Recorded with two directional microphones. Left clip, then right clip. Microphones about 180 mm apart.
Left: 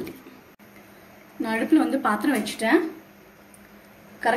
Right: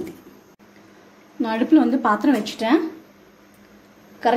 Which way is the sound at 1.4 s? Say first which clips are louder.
Right 4 dB; 55° right (ahead or behind).